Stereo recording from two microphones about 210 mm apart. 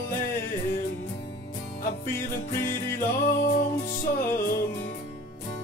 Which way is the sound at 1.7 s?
40° left (ahead or behind).